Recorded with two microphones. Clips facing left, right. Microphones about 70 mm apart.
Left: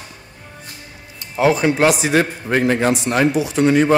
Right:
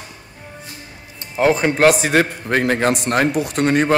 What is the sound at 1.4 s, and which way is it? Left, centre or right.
Speech, right.